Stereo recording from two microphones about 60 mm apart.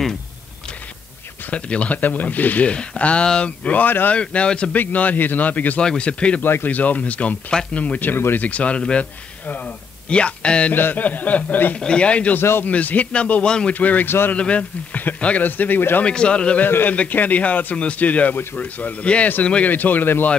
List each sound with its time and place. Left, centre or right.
1.5 s speech: left
4.2 s speech: centre
4.7 s speech: left
5.8 s speech: centre
6.4 s speech: left; by 9.0 s centre
10.0 s speech: centre
10.7 s speech: left
12.4 s a man's voice: left
12.6 s speech: left
13.7 s a man's voice: left
16.0 s speech: centre
16.6 s a man's voice: left; by 19.7 s centre
19.7 s a man's voice: left